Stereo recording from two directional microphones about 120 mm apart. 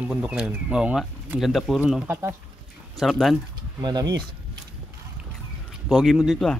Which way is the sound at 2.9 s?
Centre (ahead or behind).